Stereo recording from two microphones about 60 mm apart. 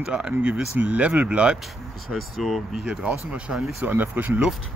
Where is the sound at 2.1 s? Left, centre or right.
Centre.